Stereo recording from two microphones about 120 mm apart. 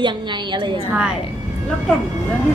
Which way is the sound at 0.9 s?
5° right (ahead or behind).